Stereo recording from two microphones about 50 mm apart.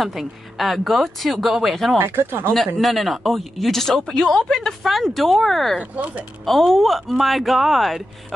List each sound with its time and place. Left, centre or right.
0.0 s speech: centre
2.0 s speech: right
2.5 s speech: centre
5.8 s speech: right
6.4 s speech: centre